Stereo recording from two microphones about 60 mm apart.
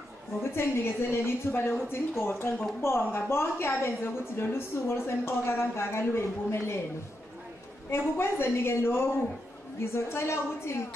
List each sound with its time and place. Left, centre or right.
0.4 s a woman's voice: left
7.9 s a woman's voice: left